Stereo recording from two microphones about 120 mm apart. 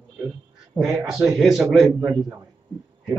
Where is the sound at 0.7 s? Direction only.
5° right (ahead or behind).